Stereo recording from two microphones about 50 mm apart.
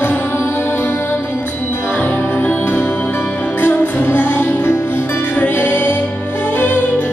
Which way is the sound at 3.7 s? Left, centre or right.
Left.